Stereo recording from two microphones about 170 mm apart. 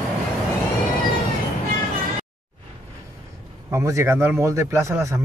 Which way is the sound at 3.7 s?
15° right (ahead or behind).